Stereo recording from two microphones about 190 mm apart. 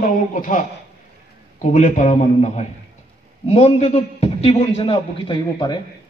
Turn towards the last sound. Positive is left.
turn(degrees=25)  # may be behind; listen again after turning